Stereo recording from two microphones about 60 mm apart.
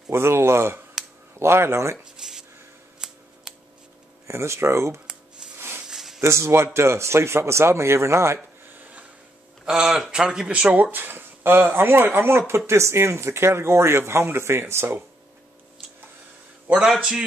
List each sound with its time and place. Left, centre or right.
0.1 s speech: right
1.0 s a sound: centre
1.4 s speech: right
2.2 s a sound: centre
3.0 s scissors: centre
3.5 s a sound: centre
4.3 s speech: right
5.9 s a sound: centre
6.2 s speech: right
9.7 s speech: centre
10.9 s speech: right
16.7 s speech: centre